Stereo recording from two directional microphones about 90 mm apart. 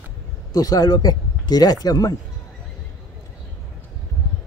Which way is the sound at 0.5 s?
45° left (ahead or behind).